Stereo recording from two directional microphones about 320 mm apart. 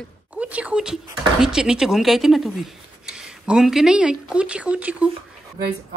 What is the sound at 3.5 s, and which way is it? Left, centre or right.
Speech, centre.